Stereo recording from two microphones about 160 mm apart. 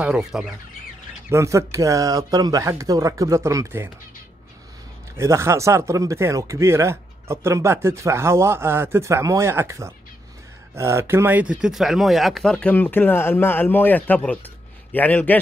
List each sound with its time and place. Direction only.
0.0 s speech: 5° right (ahead or behind)
1.3 s speech: 20° right (ahead or behind)
5.1 s speech: 15° right (ahead or behind); by 15.3 s 10° left (ahead or behind)